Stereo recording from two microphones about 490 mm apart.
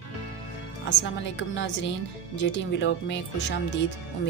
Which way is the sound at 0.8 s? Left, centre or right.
Left.